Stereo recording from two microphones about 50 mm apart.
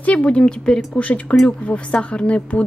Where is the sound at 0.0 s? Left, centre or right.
Left.